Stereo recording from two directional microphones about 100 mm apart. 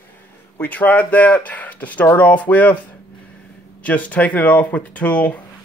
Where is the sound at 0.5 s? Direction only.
15° left (ahead or behind).